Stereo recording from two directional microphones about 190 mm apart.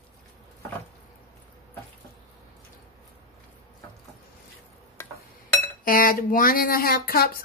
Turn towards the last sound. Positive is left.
turn(degrees=50)  # may be behind; listen again after turning